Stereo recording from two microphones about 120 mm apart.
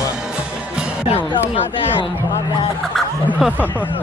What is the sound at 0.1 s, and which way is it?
Music, 5° right (ahead or behind).